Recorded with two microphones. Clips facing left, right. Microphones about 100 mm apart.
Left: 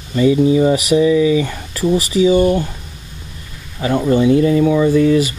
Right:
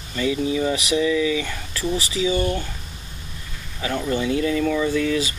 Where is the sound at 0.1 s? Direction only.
25° left (ahead or behind).